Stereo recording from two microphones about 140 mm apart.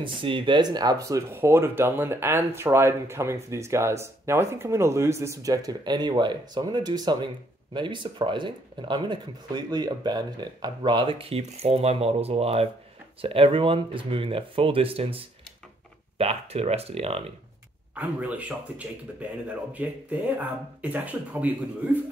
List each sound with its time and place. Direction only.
0.0 s speech: 35° right (ahead or behind)
17.9 s speech: 10° right (ahead or behind)